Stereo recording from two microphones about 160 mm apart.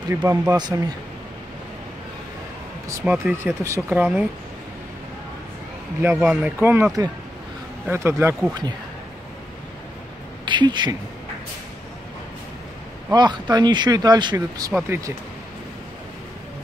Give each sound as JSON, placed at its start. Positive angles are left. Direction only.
{"t": 0.1, "sound": "speech", "side_deg": -15}
{"t": 2.9, "sound": "speech", "side_deg": -10}
{"t": 6.2, "sound": "speech", "side_deg": -10}
{"t": 10.4, "sound": "speech", "side_deg": -30}
{"t": 13.1, "sound": "speech", "side_deg": -25}